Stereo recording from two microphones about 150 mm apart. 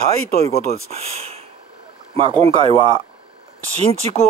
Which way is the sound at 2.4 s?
40° right (ahead or behind).